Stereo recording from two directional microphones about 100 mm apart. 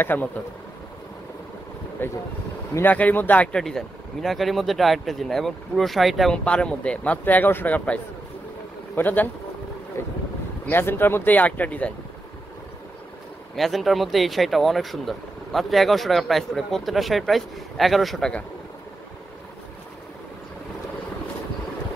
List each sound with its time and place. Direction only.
0.0 s speech: 20° left (ahead or behind)
2.0 s speech: 20° left (ahead or behind)
3.5 s speech: 5° left (ahead or behind)
13.6 s speech: centre (ahead or behind)